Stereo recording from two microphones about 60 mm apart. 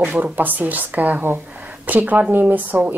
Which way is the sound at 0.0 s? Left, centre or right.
Right.